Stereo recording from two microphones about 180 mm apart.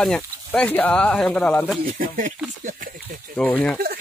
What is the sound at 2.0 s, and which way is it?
Speech, 50° right (ahead or behind).